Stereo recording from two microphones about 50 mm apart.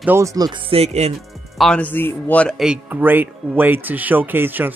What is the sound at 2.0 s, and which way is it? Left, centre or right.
Speech, left.